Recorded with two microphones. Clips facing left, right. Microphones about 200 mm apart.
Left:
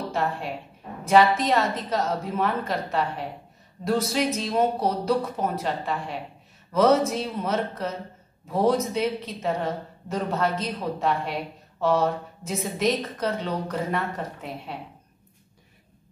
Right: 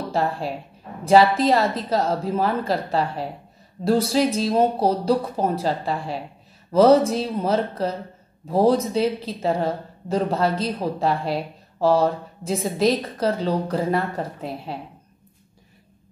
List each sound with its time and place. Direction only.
0.1 s a woman's voice: 35° right (ahead or behind)